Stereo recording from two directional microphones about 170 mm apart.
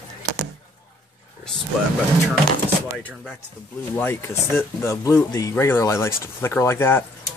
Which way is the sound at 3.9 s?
15° left (ahead or behind).